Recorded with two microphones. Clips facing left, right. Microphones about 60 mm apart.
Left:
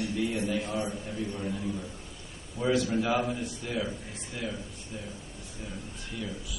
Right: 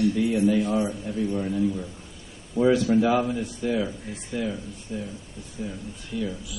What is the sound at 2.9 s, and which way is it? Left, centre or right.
A man's voice, centre.